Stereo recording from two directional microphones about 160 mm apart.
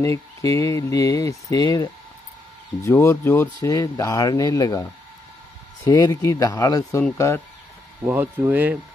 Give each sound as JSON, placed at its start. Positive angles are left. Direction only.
{"t": 0.0, "sound": "speech", "side_deg": 20}
{"t": 5.9, "sound": "speech", "side_deg": 20}
{"t": 8.1, "sound": "speech", "side_deg": -10}